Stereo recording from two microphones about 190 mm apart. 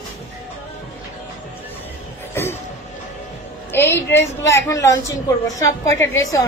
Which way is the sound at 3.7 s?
10° left (ahead or behind).